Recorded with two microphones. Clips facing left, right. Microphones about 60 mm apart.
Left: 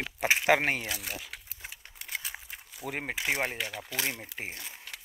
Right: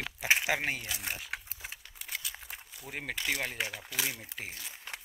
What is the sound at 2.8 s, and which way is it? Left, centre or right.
Speech, left.